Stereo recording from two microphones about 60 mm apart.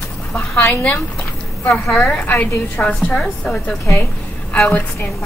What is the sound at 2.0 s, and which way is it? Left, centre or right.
A woman's voice, left.